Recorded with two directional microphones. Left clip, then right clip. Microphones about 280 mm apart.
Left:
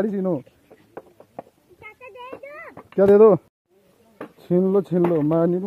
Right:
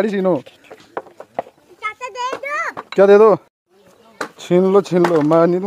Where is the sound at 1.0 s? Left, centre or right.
Centre.